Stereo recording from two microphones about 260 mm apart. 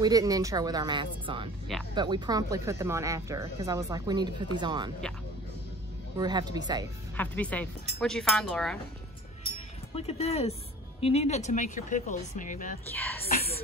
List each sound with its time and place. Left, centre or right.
0.0 s speech: centre
6.1 s speech: centre
7.2 s speech: centre
9.9 s speech: left
12.9 s a woman's voice: centre